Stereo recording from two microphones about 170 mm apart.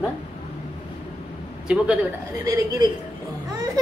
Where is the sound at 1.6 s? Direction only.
5° right (ahead or behind).